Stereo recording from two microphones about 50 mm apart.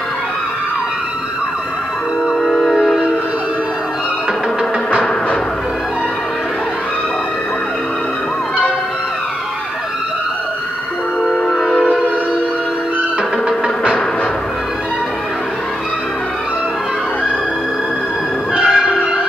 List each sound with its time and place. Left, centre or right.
2.7 s train: centre
11.2 s train: centre
18.6 s change ringing: centre